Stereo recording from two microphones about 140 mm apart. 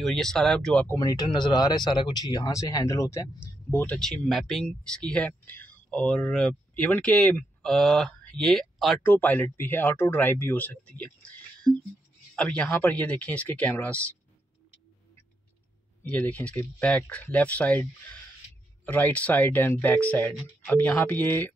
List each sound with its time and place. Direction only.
0.0 s speech: 5° left (ahead or behind)
0.9 s speech: 25° left (ahead or behind); by 8.9 s centre (ahead or behind)
9.0 s speech: 15° left (ahead or behind)
16.0 s speech: 10° left (ahead or behind)
18.9 s speech: 10° left (ahead or behind)